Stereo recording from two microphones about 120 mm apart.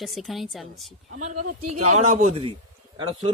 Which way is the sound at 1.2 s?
90° right.